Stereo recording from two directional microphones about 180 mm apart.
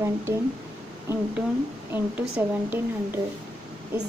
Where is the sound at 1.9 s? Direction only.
10° right (ahead or behind).